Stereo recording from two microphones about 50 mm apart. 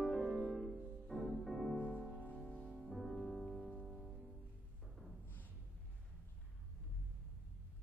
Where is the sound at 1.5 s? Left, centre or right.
Centre.